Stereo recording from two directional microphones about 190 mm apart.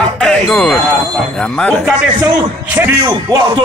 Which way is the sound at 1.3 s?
5° left (ahead or behind).